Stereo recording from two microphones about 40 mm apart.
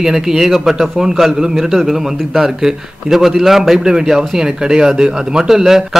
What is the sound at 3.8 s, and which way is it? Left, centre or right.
A man's voice, centre.